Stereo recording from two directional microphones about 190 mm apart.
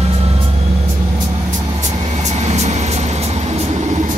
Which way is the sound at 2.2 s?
35° right (ahead or behind).